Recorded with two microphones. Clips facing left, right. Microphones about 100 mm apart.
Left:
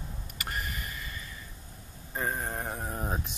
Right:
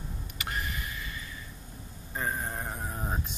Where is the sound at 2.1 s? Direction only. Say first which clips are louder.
Left 1 dB; 30° left (ahead or behind).